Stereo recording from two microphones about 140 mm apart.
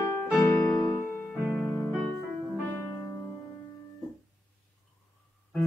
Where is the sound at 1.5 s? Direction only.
Centre (ahead or behind).